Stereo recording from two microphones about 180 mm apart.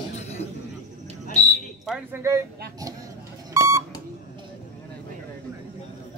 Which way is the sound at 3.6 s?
15° right (ahead or behind).